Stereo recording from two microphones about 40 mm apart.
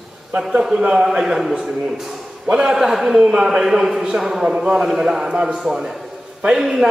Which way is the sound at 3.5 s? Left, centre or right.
Centre.